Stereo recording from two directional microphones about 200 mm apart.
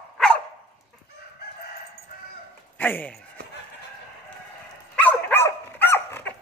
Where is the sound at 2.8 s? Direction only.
10° left (ahead or behind).